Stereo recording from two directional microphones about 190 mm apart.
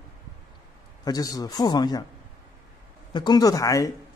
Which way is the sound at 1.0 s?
20° left (ahead or behind).